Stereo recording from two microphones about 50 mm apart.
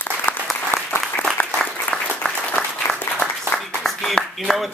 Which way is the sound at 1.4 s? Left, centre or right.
Left.